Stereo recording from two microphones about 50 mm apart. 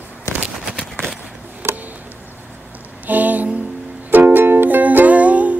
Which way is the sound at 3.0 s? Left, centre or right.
Right.